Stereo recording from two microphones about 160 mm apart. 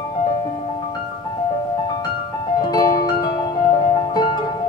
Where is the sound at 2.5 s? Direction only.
25° left (ahead or behind).